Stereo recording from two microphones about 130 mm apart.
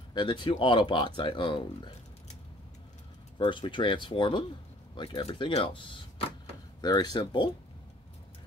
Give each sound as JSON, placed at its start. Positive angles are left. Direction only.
{"t": 0.1, "sound": "speech", "side_deg": 35}
{"t": 3.3, "sound": "speech", "side_deg": 40}